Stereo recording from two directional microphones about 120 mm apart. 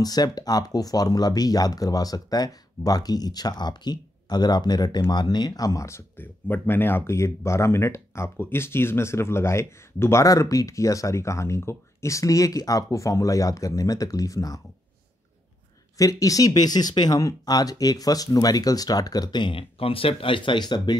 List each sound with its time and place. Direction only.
0.0 s speech: 35° left (ahead or behind)
16.0 s speech: 30° left (ahead or behind)